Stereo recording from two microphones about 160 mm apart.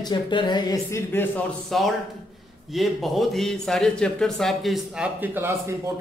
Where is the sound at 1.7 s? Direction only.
Centre (ahead or behind).